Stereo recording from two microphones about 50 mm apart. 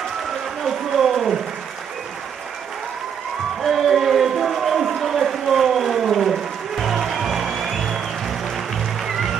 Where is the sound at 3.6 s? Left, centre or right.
Centre.